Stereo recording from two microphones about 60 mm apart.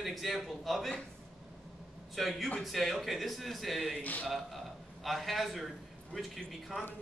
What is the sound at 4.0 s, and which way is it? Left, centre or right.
Speech, left.